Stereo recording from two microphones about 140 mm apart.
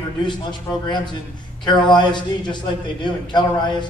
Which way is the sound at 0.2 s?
35° left (ahead or behind).